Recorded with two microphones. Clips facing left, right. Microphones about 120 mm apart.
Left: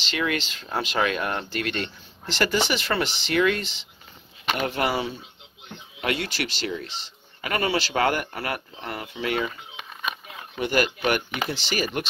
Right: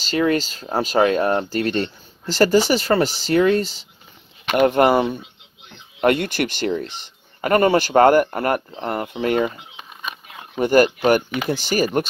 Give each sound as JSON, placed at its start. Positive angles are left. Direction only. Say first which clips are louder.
{"t": 0.0, "sound": "speech", "louder": "right 8 dB", "side_deg": -40}
{"t": 4.6, "sound": "a man's voice", "louder": "right 12 dB", "side_deg": -50}
{"t": 10.6, "sound": "a man's voice", "louder": "right 8 dB", "side_deg": -45}